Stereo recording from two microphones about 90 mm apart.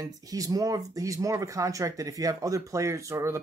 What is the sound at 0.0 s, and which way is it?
Speech, 40° right (ahead or behind).